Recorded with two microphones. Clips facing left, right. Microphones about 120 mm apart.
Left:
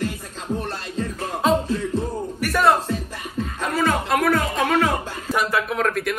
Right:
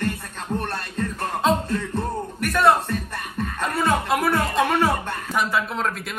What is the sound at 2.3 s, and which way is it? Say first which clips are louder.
Music: even; 5° left (ahead or behind).